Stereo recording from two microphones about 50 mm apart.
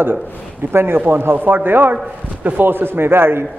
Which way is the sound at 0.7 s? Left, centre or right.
Right.